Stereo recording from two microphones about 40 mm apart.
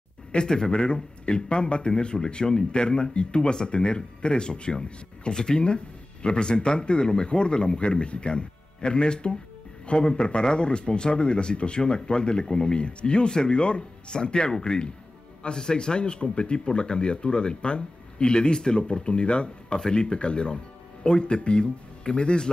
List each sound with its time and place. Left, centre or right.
0.3 s a man's voice: left